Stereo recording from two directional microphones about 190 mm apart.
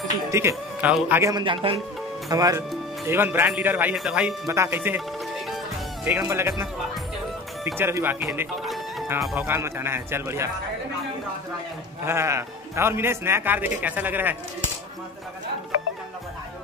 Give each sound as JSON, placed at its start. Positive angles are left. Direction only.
{"t": 0.3, "sound": "speech", "side_deg": -15}
{"t": 1.3, "sound": "speech", "side_deg": -25}
{"t": 4.5, "sound": "speech", "side_deg": -15}
{"t": 6.0, "sound": "speech", "side_deg": -10}
{"t": 12.0, "sound": "speech", "side_deg": -15}